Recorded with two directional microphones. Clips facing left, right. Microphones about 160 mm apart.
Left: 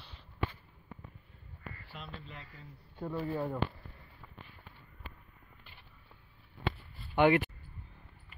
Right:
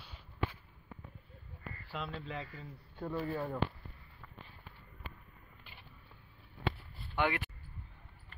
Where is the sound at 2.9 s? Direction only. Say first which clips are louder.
Left 1 dB; 10° left (ahead or behind).